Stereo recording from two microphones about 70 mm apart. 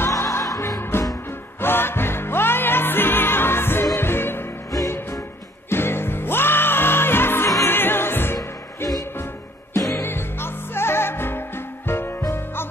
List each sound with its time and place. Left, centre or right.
0.2 s music: left
5.7 s music: left
8.4 s music: left
10.0 s music: left